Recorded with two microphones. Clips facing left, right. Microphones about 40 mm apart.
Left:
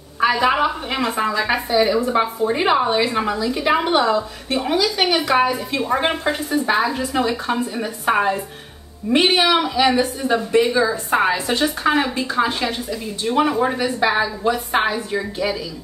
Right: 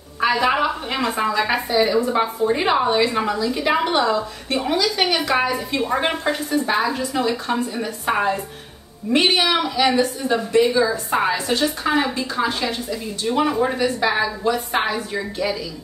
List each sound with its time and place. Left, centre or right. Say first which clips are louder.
0.4 s a woman's voice: left 1 dB; centre